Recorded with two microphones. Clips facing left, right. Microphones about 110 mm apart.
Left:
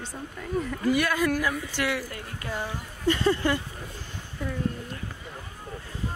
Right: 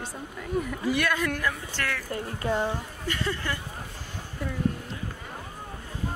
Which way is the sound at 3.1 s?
25° left (ahead or behind).